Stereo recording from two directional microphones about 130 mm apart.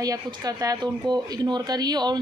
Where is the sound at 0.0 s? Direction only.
30° right (ahead or behind).